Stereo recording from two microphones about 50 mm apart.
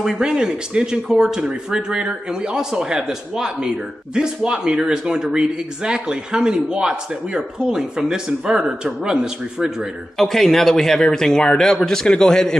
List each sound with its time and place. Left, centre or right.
0.0 s a man's voice: centre
10.1 s speech: centre